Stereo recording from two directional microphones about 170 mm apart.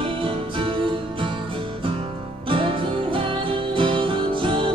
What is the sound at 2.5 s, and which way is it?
Music, 30° right (ahead or behind).